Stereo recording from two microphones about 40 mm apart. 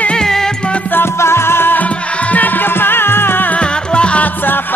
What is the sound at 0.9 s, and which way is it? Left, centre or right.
Music, left.